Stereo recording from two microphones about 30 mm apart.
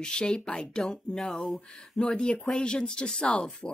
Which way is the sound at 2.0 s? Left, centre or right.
Left.